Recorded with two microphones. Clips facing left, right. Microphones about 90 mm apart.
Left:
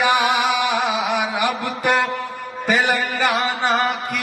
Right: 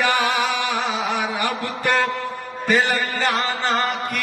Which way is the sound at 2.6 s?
15° left (ahead or behind).